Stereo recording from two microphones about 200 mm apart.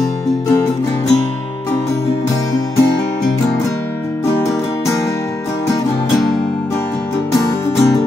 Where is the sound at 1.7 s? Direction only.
15° left (ahead or behind).